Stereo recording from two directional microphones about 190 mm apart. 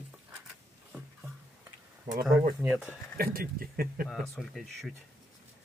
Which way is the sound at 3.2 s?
50° right (ahead or behind).